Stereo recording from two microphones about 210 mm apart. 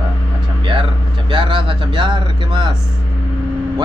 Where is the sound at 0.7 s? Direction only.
25° right (ahead or behind).